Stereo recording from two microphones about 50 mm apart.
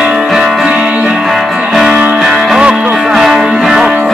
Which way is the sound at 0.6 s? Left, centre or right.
Centre.